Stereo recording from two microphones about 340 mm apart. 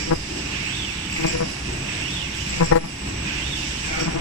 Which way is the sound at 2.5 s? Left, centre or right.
Left.